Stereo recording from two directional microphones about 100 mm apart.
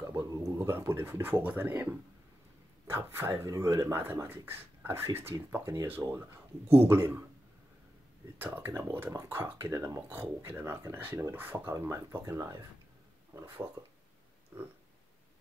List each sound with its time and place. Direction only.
0.7 s speech: 20° right (ahead or behind)
8.4 s speech: 20° right (ahead or behind)
14.5 s speech: 30° right (ahead or behind)